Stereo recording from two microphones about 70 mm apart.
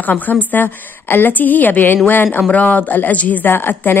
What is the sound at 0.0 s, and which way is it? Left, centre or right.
A woman's voice, left.